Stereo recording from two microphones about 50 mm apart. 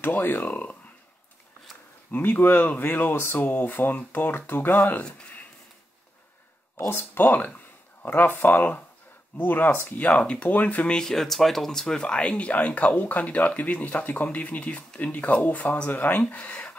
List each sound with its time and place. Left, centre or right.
0.0 s speech: left
2.1 s speech: left
6.9 s speech: left
10.0 s speech: left
10.9 s speech: centre; by 16.7 s left